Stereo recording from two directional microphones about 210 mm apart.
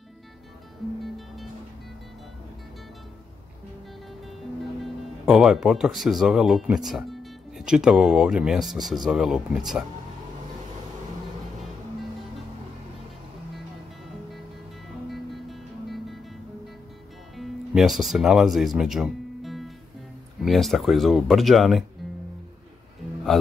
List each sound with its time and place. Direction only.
1.0 s music: centre (ahead or behind)
4.7 s speech: centre (ahead or behind)
15.0 s music: centre (ahead or behind)
17.4 s speech: centre (ahead or behind)
23.3 s a man's voice: centre (ahead or behind)